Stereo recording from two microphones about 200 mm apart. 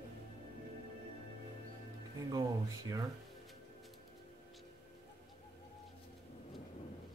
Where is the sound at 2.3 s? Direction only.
20° right (ahead or behind).